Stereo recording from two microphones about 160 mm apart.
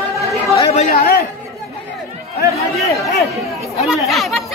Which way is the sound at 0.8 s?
70° left (ahead or behind).